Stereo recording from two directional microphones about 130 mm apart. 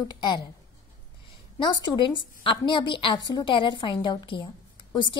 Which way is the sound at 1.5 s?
35° left (ahead or behind).